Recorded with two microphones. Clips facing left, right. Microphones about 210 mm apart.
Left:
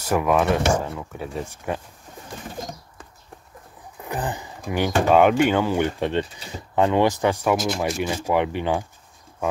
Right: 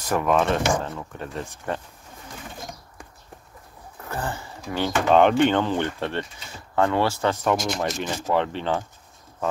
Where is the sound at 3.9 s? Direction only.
15° left (ahead or behind).